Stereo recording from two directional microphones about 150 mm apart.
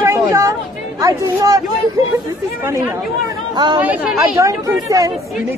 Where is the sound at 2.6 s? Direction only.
20° right (ahead or behind).